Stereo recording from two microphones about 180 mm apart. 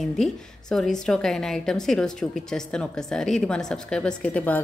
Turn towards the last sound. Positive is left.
turn(degrees=10)  # may be behind; listen again after turning